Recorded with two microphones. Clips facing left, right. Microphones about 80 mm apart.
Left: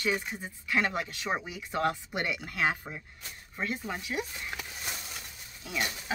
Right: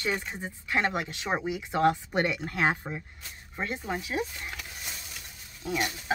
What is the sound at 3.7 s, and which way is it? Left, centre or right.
Speech, centre.